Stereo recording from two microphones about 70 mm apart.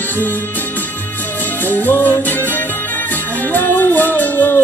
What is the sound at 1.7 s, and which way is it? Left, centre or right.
Music, left.